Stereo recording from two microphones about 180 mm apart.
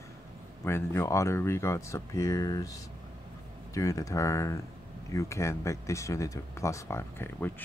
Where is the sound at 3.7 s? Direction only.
20° left (ahead or behind).